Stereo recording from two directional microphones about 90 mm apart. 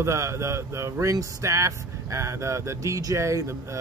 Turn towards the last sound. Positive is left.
turn(degrees=-35)  # may be behind; listen again after turning